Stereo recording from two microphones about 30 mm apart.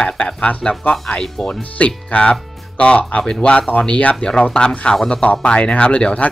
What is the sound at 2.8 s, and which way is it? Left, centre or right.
Speech, left.